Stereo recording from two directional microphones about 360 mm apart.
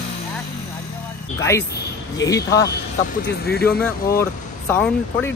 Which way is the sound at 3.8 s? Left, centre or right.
Centre.